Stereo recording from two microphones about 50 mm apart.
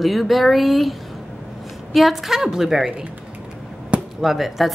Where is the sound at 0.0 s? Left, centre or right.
Centre.